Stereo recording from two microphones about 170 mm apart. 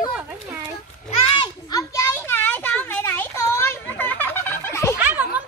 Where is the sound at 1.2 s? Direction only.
30° left (ahead or behind).